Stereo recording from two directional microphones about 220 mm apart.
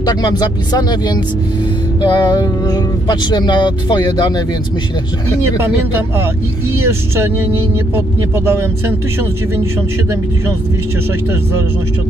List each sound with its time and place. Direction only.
0.0 s speech: 20° left (ahead or behind)
6.8 s speech: 10° right (ahead or behind)